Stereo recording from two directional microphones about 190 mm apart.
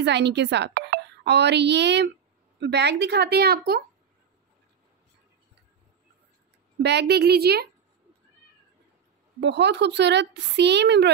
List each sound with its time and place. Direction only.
0.0 s speech: 65° right (ahead or behind)
6.8 s speech: 60° right (ahead or behind)
9.4 s speech: 65° right (ahead or behind)